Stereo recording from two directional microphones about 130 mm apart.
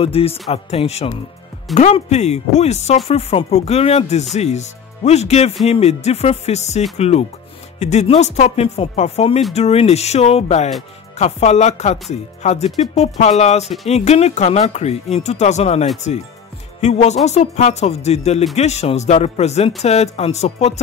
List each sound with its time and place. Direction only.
0.0 s speech: 50° left (ahead or behind)